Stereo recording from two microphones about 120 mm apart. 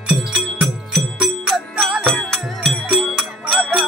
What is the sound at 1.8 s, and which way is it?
Music, 5° left (ahead or behind).